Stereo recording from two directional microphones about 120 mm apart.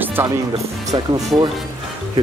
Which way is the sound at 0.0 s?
20° right (ahead or behind).